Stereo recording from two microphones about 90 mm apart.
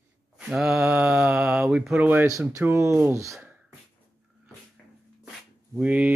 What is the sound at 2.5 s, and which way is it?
Speech, 35° right (ahead or behind).